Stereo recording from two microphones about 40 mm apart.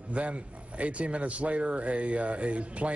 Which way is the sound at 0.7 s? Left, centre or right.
Right.